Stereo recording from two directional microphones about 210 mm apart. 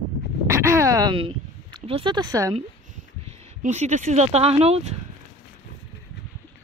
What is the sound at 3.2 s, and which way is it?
Speech, 30° right (ahead or behind).